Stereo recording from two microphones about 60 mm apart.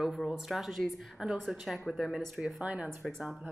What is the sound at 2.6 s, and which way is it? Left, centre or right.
Speech, right.